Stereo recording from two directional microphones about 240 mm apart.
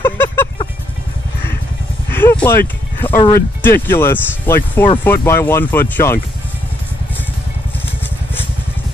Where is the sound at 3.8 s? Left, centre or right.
Centre.